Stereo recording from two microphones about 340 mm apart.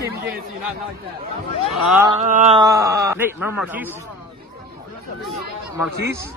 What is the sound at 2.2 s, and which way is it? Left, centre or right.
Speech, centre.